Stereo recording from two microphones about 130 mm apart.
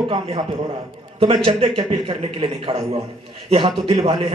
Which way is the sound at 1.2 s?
50° right (ahead or behind).